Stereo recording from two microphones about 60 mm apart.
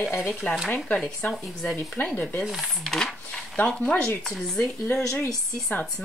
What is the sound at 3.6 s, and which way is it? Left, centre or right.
Speech, centre.